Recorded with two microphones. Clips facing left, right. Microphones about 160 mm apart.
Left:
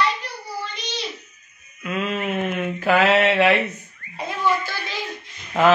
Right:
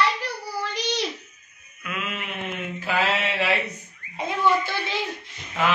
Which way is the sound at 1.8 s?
35° left (ahead or behind).